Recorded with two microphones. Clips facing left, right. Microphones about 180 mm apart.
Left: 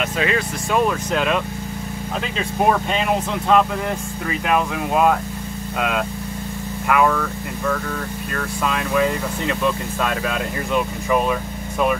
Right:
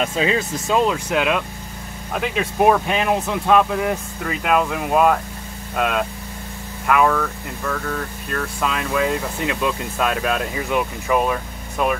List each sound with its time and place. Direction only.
0.0 s speech: 25° right (ahead or behind)
1.1 s speech: 10° right (ahead or behind)
8.3 s speech: centre (ahead or behind)
10.0 s speech: 5° right (ahead or behind)